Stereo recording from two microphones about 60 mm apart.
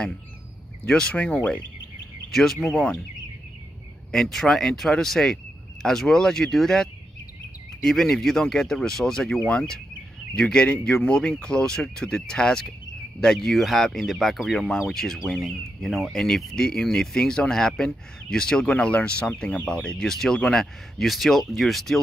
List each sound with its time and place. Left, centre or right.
0.8 s speech: centre
2.3 s speech: centre
4.1 s speech: centre